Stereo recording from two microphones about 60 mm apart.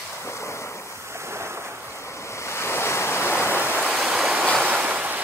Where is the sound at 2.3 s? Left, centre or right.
Left.